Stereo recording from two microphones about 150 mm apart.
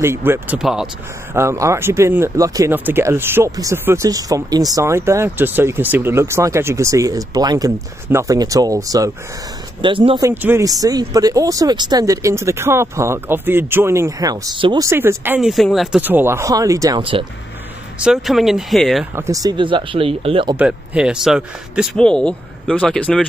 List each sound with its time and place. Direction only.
0.0 s speech: 15° right (ahead or behind)
1.3 s speech: 20° right (ahead or behind)
9.8 s speech: 35° right (ahead or behind)
10.2 s speech: 15° right (ahead or behind)
10.6 s speech: 25° right (ahead or behind)
14.9 s speech: 15° right (ahead or behind)
15.5 s speech: centre (ahead or behind)
16.0 s speech: 10° right (ahead or behind)
17.0 s speech: 35° right (ahead or behind)
17.9 s speech: 5° right (ahead or behind)
19.1 s speech: 20° right (ahead or behind); by 20.5 s 35° right (ahead or behind)
20.5 s speech: 5° right (ahead or behind)
21.9 s speech: 5° left (ahead or behind)